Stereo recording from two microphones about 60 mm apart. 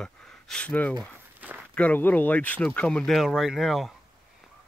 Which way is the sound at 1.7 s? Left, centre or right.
Left.